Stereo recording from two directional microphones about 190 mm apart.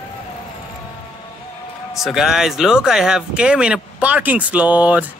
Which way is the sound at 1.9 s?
Centre (ahead or behind).